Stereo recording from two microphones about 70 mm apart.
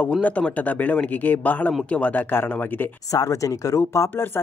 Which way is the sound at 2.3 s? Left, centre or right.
Left.